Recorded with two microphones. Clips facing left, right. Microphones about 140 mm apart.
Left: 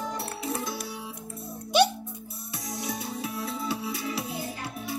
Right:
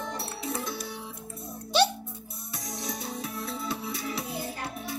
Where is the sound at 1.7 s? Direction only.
15° left (ahead or behind).